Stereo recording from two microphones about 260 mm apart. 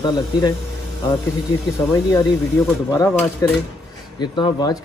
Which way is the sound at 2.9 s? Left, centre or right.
Centre.